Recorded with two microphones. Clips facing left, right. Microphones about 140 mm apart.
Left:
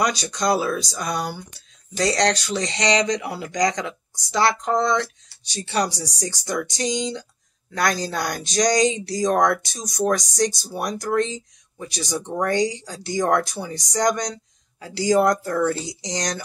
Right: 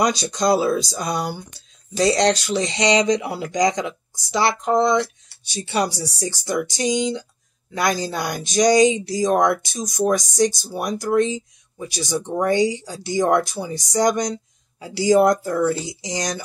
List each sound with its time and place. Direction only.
0.0 s speech: 25° right (ahead or behind); by 16.4 s 5° right (ahead or behind)